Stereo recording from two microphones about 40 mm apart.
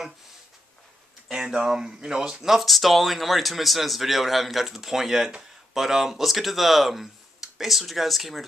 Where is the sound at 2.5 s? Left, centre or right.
Centre.